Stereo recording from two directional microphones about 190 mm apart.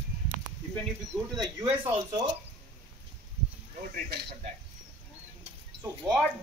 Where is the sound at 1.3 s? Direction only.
20° right (ahead or behind).